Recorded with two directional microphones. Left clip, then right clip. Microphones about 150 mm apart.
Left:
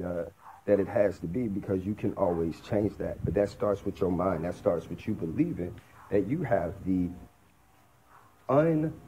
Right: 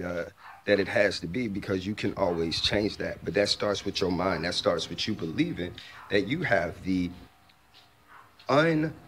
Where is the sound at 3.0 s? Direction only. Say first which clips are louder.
Right 1 dB; 30° right (ahead or behind).